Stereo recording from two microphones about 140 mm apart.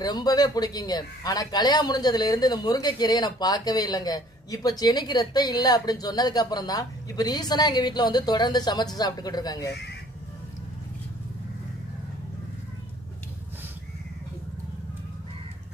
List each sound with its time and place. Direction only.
0.0 s speech: 30° left (ahead or behind)